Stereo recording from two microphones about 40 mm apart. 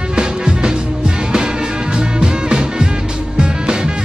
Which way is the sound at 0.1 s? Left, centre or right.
Right.